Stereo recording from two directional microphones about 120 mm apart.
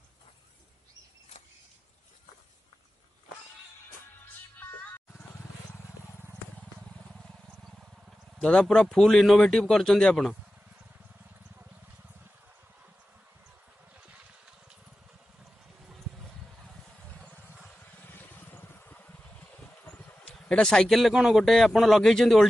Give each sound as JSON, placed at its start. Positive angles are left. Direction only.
{"t": 8.4, "sound": "speech", "side_deg": 10}
{"t": 18.0, "sound": "vehicle", "side_deg": 15}
{"t": 19.8, "sound": "speech", "side_deg": 10}